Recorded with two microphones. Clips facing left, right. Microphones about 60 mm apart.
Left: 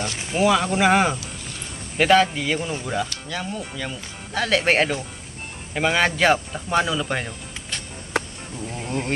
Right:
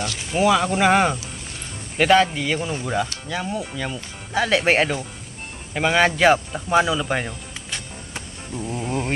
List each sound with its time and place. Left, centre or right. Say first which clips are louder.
0.3 s speech: right 1 dB; centre
8.2 s a sound: left 12 dB; left
8.5 s speech: right 3 dB; centre